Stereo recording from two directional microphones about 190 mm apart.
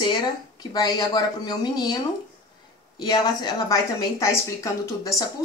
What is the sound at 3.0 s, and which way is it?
A woman's voice, 20° left (ahead or behind).